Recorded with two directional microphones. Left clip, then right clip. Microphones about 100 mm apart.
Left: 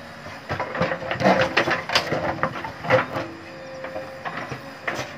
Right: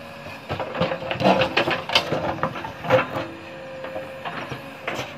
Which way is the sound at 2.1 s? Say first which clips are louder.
Even; 5° left (ahead or behind).